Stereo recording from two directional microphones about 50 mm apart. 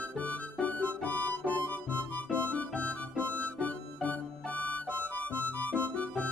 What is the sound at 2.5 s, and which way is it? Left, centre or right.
Music, left.